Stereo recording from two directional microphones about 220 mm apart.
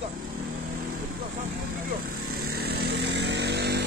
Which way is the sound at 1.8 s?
40° right (ahead or behind).